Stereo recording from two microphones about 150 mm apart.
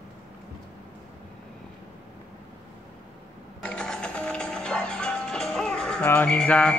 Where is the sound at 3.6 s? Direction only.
5° left (ahead or behind).